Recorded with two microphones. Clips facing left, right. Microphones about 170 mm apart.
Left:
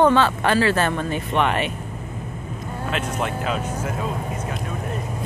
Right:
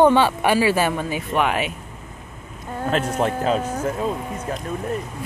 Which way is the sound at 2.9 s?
35° right (ahead or behind).